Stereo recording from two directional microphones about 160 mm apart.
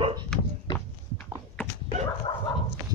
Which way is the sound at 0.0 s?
30° right (ahead or behind).